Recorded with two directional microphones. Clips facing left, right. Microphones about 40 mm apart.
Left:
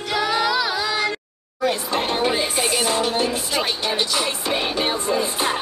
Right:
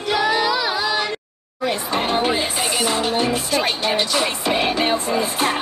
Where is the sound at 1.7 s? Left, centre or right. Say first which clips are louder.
Right 2 dB; right.